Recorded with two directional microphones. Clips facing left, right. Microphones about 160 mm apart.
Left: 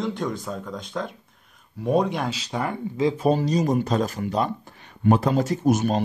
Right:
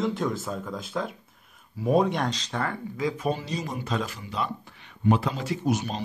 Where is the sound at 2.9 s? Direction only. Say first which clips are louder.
Left 8 dB; 30° left (ahead or behind); by 6.0 s 50° left (ahead or behind).